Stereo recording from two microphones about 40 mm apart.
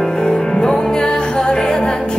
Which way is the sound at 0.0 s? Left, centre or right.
Centre.